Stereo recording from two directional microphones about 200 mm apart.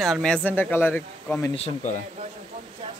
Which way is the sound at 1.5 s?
35° left (ahead or behind).